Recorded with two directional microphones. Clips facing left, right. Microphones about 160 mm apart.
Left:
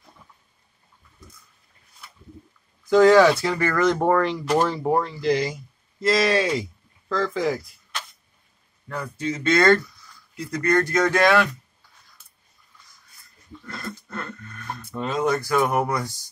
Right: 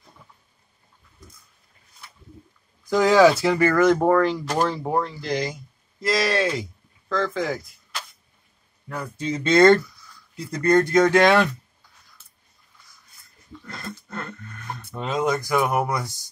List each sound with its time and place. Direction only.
2.9 s a man's voice: centre (ahead or behind)
9.2 s speech: 25° right (ahead or behind)
13.7 s a sound: 20° right (ahead or behind)
14.8 s speech: 20° right (ahead or behind)